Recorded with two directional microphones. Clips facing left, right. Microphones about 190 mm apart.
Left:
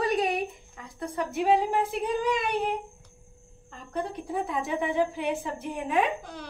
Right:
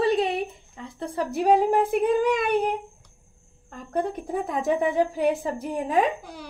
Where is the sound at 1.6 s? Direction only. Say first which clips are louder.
Right 6 dB; 50° right (ahead or behind).